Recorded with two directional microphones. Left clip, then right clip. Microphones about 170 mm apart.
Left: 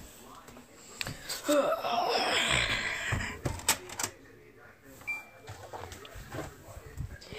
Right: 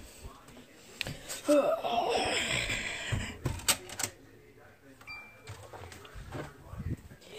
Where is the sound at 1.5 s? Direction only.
25° right (ahead or behind).